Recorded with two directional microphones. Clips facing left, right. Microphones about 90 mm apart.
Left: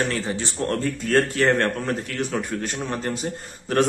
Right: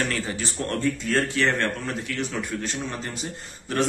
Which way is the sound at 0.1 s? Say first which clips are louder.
Left 2 dB; 30° left (ahead or behind).